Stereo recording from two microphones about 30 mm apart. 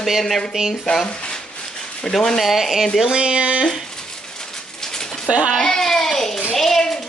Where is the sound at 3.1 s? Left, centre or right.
Right.